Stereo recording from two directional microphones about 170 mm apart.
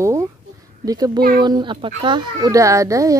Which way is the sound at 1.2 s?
60° right (ahead or behind).